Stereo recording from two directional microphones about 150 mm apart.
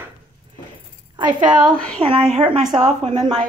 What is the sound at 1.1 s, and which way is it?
Speech, 30° right (ahead or behind).